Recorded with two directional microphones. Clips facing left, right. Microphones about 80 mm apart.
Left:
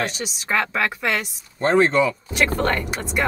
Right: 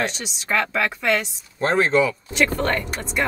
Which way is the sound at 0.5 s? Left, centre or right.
Centre.